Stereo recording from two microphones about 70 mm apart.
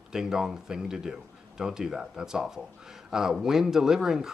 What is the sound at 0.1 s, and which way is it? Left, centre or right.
Speech, centre.